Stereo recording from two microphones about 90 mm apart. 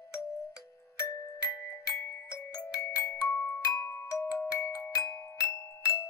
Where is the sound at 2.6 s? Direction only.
30° left (ahead or behind).